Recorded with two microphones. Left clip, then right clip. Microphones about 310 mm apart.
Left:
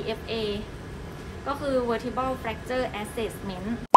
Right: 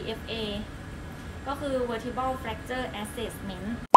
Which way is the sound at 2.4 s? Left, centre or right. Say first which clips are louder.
Left 4 dB; left.